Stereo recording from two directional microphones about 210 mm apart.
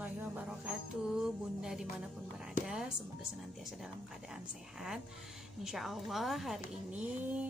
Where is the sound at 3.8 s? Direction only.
Centre (ahead or behind).